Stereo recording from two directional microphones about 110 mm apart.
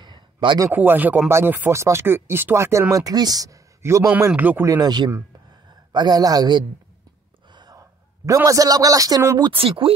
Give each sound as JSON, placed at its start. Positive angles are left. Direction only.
{"t": 0.0, "sound": "a sound", "side_deg": -45}
{"t": 0.7, "sound": "speech", "side_deg": -15}
{"t": 4.3, "sound": "speech", "side_deg": -15}
{"t": 4.6, "sound": "music", "side_deg": -35}
{"t": 7.5, "sound": "a sound", "side_deg": -35}
{"t": 8.5, "sound": "music", "side_deg": -35}
{"t": 9.4, "sound": "speech", "side_deg": -55}